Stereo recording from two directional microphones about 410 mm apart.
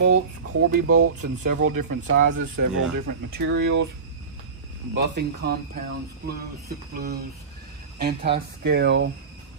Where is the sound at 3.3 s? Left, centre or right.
Right.